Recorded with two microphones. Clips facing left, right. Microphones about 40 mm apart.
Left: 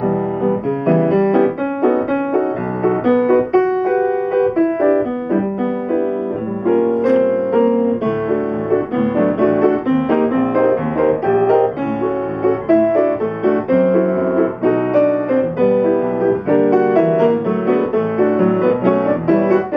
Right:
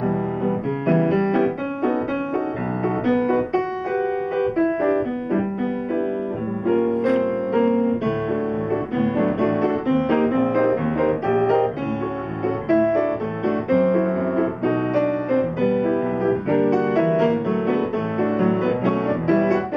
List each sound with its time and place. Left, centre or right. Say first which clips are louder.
0.5 s music: left 5 dB; centre
1.3 s piano: left 6 dB; centre
6.7 s music: left 5 dB; centre
8.9 s music: left 5 dB; centre
10.3 s music: left 4 dB; centre
11.0 s music: left 5 dB; centre